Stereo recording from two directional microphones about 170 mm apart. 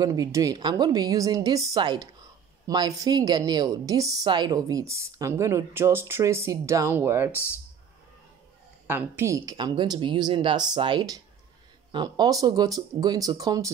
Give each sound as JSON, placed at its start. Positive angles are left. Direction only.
{"t": 0.0, "sound": "a woman's voice", "side_deg": -20}
{"t": 8.8, "sound": "a woman's voice", "side_deg": -15}